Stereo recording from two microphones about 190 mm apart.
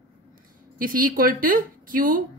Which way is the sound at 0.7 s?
45° right (ahead or behind).